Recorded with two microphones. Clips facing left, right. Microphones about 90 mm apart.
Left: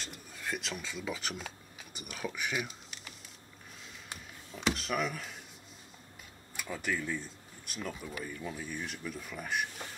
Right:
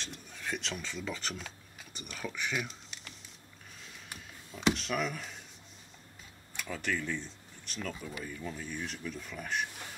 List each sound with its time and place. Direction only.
0.0 s speech: 5° left (ahead or behind)
4.5 s speech: centre (ahead or behind)
6.5 s speech: 5° left (ahead or behind)